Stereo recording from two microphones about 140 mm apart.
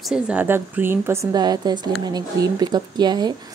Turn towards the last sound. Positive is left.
turn(degrees=-30)  # may be behind; listen again after turning